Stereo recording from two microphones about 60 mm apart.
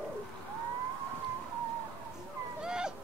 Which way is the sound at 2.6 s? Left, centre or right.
Centre.